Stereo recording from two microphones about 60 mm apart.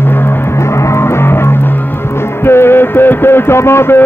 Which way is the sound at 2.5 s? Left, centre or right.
Left.